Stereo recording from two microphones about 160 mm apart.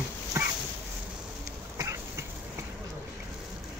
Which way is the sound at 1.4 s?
20° right (ahead or behind).